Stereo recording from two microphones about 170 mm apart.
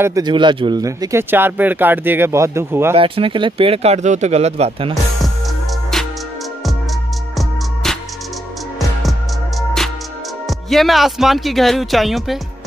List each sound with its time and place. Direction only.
0.0 s speech: 20° right (ahead or behind)
3.0 s speech: 30° right (ahead or behind)
7.3 s music: centre (ahead or behind)
10.7 s speech: centre (ahead or behind)